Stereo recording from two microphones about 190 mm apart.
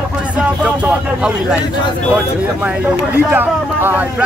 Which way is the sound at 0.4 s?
5° right (ahead or behind).